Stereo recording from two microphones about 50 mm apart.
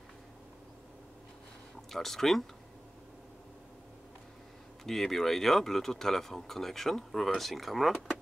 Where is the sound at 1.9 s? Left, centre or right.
Centre.